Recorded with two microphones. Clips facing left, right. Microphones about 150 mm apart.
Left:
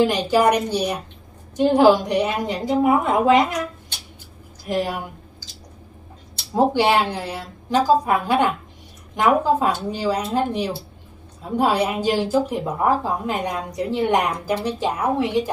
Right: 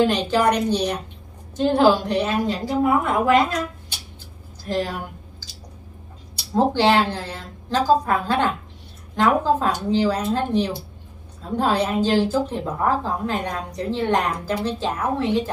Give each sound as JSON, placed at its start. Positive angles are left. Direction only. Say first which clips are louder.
{"t": 0.0, "sound": "a woman's voice", "louder": "left 1 dB", "side_deg": 10}
{"t": 4.6, "sound": "a woman's voice", "louder": "left 1 dB", "side_deg": 10}
{"t": 6.5, "sound": "a woman's voice", "louder": "even", "side_deg": 10}